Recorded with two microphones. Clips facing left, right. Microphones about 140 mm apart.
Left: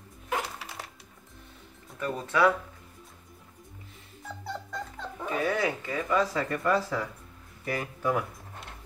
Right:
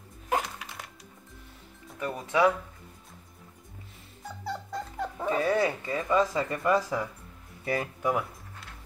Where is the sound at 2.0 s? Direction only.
15° right (ahead or behind).